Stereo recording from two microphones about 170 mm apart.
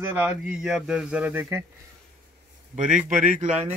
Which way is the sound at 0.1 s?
10° right (ahead or behind).